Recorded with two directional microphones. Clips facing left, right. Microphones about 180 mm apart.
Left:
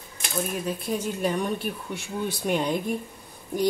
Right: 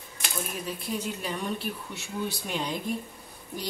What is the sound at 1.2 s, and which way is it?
Speech, 55° left (ahead or behind).